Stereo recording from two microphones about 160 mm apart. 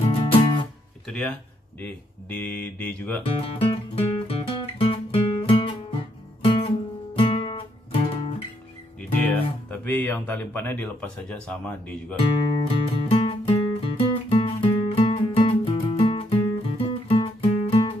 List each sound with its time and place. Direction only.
0.0 s music: 35° left (ahead or behind)
1.0 s speech: 5° left (ahead or behind)
3.3 s music: 35° left (ahead or behind)
9.2 s speech: 10° left (ahead or behind)
12.5 s music: 35° left (ahead or behind)